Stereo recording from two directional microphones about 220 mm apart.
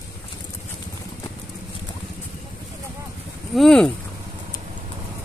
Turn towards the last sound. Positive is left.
turn(degrees=0)  # may be behind; listen again after turning